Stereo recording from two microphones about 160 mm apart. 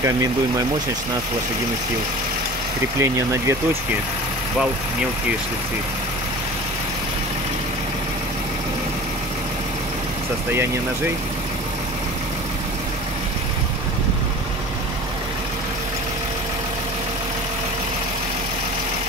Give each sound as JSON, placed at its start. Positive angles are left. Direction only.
{"t": 0.0, "sound": "speech", "side_deg": -20}
{"t": 3.0, "sound": "speech", "side_deg": -20}